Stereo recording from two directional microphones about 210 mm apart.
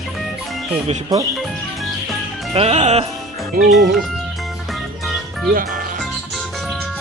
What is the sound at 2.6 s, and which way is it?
Music, 30° right (ahead or behind).